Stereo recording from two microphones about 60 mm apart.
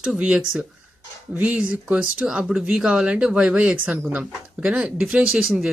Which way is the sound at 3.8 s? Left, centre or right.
Right.